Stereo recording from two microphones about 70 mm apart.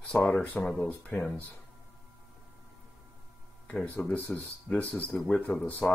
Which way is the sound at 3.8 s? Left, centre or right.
Left.